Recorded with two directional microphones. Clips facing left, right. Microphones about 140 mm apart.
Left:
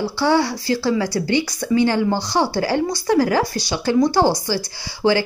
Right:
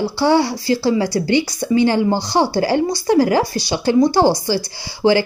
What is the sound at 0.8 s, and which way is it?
Speech, 30° right (ahead or behind).